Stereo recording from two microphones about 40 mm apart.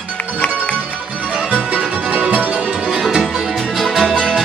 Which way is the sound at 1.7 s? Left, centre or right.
Right.